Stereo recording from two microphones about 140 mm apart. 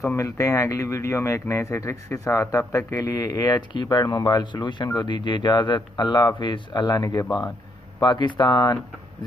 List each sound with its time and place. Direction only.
0.0 s speech: 20° left (ahead or behind)